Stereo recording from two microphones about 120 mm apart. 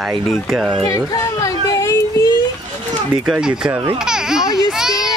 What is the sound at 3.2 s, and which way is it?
Speech, 5° right (ahead or behind).